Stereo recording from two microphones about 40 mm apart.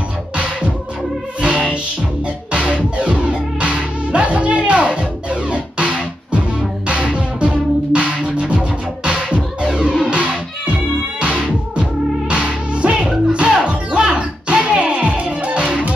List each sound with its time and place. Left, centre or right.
1.4 s music: right
11.1 s music: right